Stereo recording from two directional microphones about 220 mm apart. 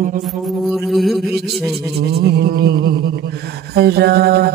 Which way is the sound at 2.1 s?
45° right (ahead or behind).